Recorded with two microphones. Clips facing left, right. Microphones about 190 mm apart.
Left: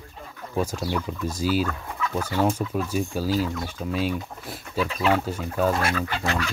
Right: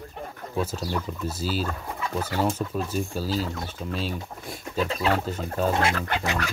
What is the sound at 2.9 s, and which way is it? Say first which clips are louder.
Speech: left 3 dB; 10° left (ahead or behind).